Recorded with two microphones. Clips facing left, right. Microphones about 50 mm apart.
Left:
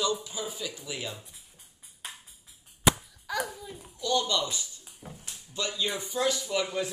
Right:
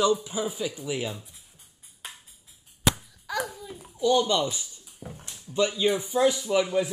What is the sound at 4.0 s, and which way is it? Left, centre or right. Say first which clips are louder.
Speech: right 6 dB; centre.